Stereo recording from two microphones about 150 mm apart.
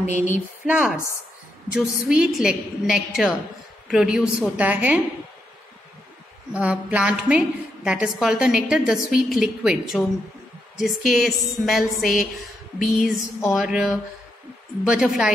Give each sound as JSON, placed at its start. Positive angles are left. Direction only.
{"t": 0.0, "sound": "a sound", "side_deg": 55}
{"t": 0.7, "sound": "a woman's voice", "side_deg": -5}
{"t": 6.5, "sound": "a woman's voice", "side_deg": -10}
{"t": 11.1, "sound": "a woman's voice", "side_deg": 0}